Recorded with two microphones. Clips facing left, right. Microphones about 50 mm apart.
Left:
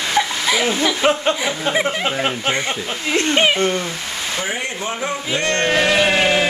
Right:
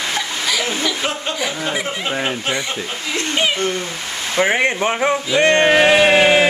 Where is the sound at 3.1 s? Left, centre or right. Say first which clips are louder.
Left 4 dB; left.